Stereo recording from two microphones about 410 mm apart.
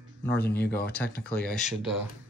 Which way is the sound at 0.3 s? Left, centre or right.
Left.